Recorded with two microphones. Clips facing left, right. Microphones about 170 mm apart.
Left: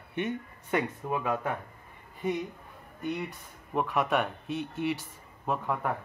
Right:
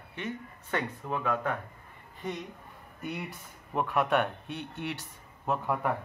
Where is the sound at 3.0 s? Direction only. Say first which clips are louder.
Left 4 dB; 5° right (ahead or behind).